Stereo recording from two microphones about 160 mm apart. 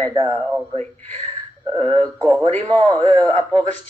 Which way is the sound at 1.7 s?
35° right (ahead or behind).